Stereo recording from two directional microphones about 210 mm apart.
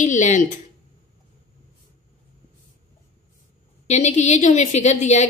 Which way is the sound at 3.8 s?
35° left (ahead or behind).